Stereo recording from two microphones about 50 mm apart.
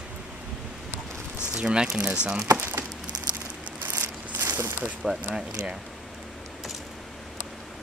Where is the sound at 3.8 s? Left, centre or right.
Right.